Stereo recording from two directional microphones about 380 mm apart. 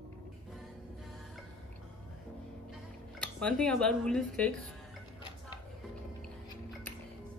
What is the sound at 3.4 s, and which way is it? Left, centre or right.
A woman's voice, centre.